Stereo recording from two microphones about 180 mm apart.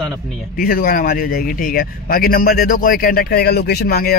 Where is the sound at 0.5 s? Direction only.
55° left (ahead or behind).